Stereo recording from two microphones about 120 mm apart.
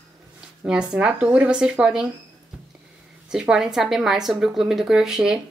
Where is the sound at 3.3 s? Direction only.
5° right (ahead or behind).